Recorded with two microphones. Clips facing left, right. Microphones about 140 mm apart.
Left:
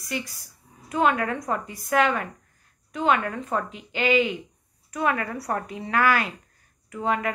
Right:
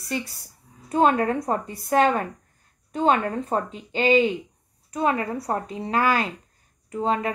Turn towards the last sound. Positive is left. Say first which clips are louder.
# right 2 dB
turn(degrees=-25)  # may be behind; listen again after turning